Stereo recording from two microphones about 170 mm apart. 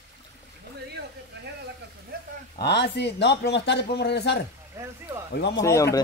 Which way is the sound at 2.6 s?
85° left.